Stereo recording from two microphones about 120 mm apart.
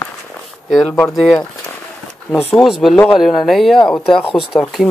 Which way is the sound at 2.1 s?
15° left (ahead or behind).